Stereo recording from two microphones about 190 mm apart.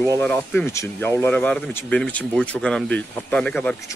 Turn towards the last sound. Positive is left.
turn(degrees=5)  # may be behind; listen again after turning